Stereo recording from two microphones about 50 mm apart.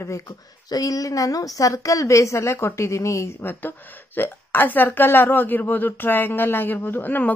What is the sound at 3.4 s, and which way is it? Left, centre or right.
A woman's voice, left.